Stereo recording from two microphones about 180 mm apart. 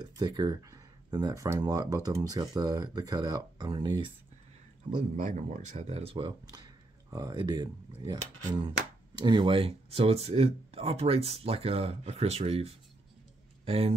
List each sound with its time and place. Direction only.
0.0 s speech: 20° right (ahead or behind)
5.2 s speech: 45° right (ahead or behind); by 8.2 s 25° right (ahead or behind)
9.2 s speech: 25° right (ahead or behind)
13.7 s speech: 35° right (ahead or behind)